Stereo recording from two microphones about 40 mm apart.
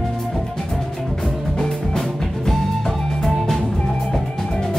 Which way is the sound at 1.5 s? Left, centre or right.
Centre.